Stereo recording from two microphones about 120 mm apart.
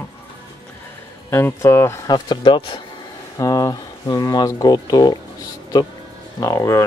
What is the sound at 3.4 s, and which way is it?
Speech, 30° left (ahead or behind).